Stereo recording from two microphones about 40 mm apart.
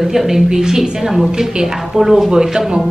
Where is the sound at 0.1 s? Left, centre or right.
Centre.